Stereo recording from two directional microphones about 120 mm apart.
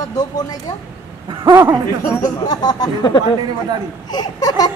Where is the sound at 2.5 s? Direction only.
35° left (ahead or behind).